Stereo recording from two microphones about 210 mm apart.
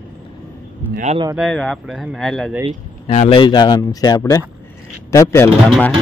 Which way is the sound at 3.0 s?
30° left (ahead or behind).